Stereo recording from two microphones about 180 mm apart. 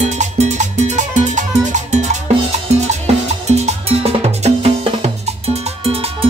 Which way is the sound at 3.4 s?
40° right (ahead or behind).